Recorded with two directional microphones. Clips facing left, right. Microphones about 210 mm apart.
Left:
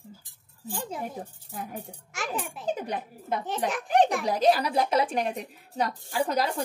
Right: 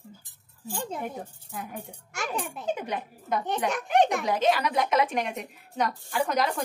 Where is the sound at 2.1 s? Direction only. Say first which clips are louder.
Right 1 dB; centre (ahead or behind).